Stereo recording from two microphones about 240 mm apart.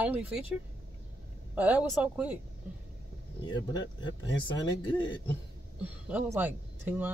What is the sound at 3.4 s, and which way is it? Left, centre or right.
Speech, centre.